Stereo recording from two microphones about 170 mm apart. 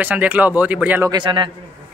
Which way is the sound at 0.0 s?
10° right (ahead or behind).